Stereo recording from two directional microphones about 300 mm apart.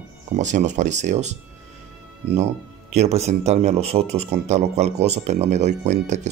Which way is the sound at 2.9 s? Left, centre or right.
Right.